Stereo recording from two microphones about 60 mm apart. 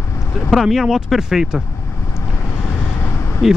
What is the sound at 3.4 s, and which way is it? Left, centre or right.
Speech, centre.